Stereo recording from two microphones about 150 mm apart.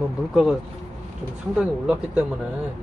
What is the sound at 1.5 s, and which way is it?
Speech, 5° right (ahead or behind).